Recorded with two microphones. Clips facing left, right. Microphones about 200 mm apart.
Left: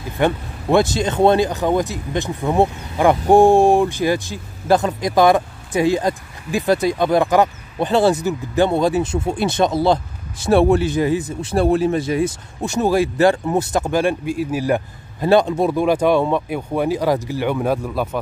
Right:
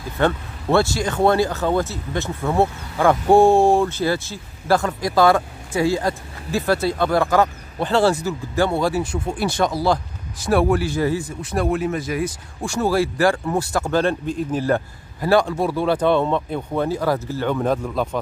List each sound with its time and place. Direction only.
0.2 s a man's voice: 15° left (ahead or behind)